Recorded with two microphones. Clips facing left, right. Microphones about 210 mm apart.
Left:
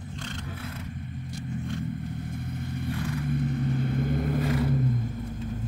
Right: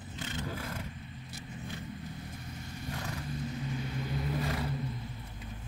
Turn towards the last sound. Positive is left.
turn(degrees=45)  # may be behind; listen again after turning